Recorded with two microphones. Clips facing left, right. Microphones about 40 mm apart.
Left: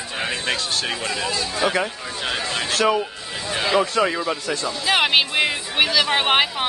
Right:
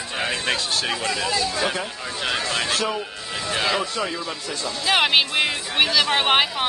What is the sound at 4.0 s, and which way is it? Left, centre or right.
Speech, left.